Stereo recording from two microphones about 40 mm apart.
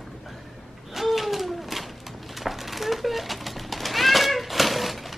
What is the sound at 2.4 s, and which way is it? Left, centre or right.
Cat, centre.